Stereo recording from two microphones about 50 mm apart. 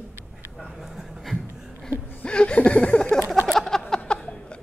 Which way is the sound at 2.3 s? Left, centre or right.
Left.